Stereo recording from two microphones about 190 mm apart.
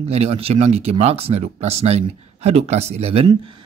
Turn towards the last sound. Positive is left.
turn(degrees=-30)  # may be behind; listen again after turning